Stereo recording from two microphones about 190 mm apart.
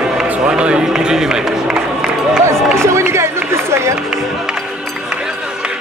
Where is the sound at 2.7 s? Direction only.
15° right (ahead or behind).